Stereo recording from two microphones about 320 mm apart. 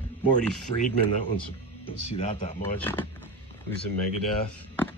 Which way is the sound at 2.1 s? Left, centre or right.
Centre.